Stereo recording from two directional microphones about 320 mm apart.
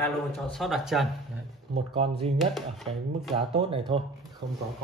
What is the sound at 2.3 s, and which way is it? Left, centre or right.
Speech, centre.